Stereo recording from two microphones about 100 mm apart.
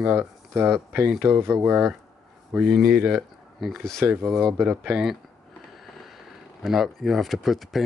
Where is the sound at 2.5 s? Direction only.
5° right (ahead or behind).